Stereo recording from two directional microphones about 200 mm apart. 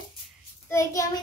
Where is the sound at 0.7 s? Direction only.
15° left (ahead or behind).